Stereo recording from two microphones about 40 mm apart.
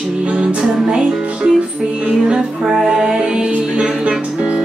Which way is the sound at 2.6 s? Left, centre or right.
Centre.